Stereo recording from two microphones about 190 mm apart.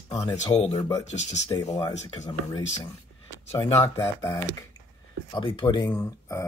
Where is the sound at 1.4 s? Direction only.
20° left (ahead or behind).